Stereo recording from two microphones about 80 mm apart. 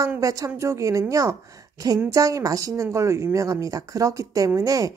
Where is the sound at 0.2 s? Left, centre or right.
Right.